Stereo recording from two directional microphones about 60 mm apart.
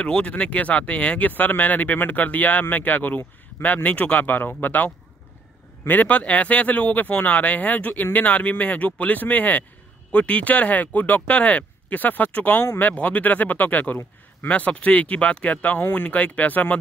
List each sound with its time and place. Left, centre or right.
0.0 s speech: centre